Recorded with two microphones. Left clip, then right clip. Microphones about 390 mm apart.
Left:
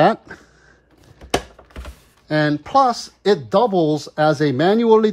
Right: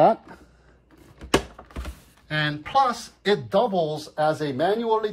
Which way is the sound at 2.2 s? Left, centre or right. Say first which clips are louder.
Left 7 dB; centre.